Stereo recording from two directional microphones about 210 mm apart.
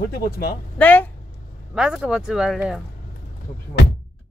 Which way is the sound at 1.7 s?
5° right (ahead or behind).